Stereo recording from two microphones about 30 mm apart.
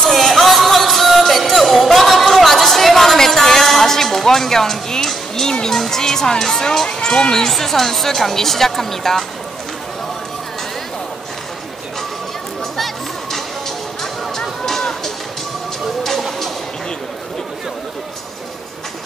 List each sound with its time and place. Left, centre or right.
0.0 s music: centre
2.0 s a sound: centre
5.8 s speech: centre
6.9 s speech: left
7.5 s speech: centre
12.7 s music: centre